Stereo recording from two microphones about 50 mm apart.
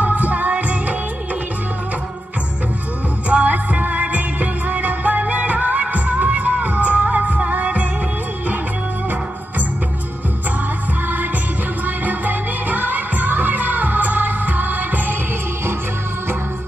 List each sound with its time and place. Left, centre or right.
0.0 s music: right
3.3 s music: right
11.8 s music: right